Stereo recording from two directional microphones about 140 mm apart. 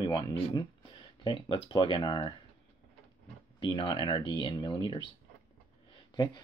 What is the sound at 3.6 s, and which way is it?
Speech, 35° left (ahead or behind).